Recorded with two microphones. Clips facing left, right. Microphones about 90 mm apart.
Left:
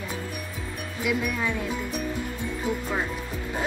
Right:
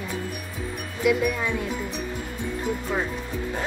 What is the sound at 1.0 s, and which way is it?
Speech, centre (ahead or behind).